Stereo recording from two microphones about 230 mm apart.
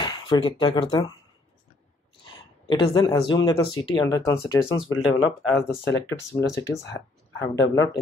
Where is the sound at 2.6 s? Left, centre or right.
Centre.